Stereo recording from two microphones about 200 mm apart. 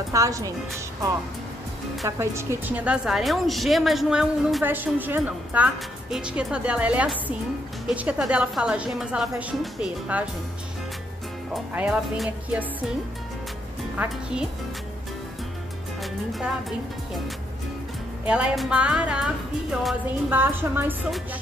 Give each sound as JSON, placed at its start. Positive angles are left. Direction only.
{"t": 0.1, "sound": "a woman's voice", "side_deg": -15}
{"t": 2.0, "sound": "a woman's voice", "side_deg": -15}
{"t": 11.5, "sound": "a woman's voice", "side_deg": -5}
{"t": 13.9, "sound": "a woman's voice", "side_deg": -5}
{"t": 18.2, "sound": "a woman's voice", "side_deg": -5}